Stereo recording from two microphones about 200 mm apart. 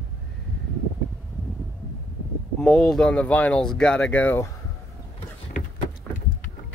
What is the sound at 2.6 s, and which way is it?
Speech, centre (ahead or behind).